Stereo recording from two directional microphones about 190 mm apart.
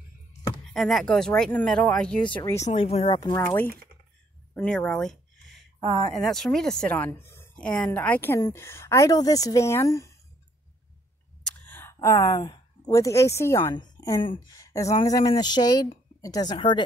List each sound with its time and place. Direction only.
0.7 s speech: centre (ahead or behind)
2.6 s speech: 35° left (ahead or behind)
3.2 s speech: 20° left (ahead or behind)
3.7 s typing: 50° right (ahead or behind)
4.6 s a sound: 5° left (ahead or behind)
5.8 s speech: 30° right (ahead or behind)
6.1 s speech: centre (ahead or behind)
11.6 s a woman's voice: 10° left (ahead or behind)